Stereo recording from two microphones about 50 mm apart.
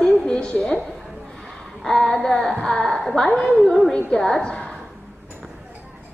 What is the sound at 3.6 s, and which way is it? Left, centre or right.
Speech, centre.